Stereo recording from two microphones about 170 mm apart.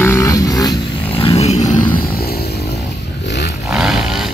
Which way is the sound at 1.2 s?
40° left (ahead or behind).